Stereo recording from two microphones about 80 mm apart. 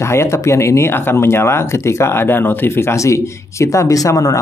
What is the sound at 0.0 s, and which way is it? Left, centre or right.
Speech, left.